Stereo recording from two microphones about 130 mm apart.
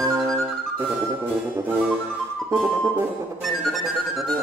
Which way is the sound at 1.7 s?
10° right (ahead or behind).